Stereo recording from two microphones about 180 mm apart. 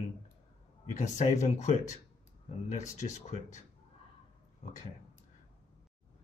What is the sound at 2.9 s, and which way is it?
Speech, 40° left (ahead or behind).